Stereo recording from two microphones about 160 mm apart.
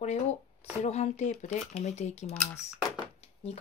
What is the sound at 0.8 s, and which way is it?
Speech, 45° left (ahead or behind).